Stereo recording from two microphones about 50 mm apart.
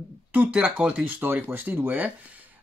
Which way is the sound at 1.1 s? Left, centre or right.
Right.